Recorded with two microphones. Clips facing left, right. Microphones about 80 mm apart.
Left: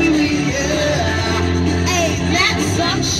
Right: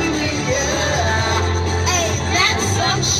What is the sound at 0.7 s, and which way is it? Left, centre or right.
Music, right.